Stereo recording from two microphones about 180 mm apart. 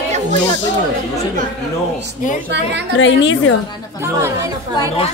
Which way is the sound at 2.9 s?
90° left.